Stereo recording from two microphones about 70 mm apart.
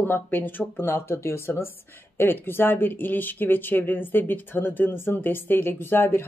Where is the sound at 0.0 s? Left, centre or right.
Left.